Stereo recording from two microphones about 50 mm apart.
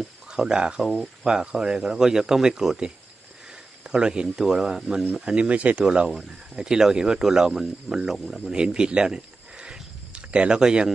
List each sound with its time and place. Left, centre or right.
0.3 s speech: centre
0.8 s speech: centre
1.2 s speech: centre
5.3 s speech: right
6.0 s speech: centre
8.5 s a sound: centre